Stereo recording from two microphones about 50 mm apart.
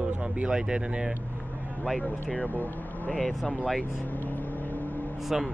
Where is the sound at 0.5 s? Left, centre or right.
Centre.